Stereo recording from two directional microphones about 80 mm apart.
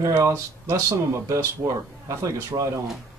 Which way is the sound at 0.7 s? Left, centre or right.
Right.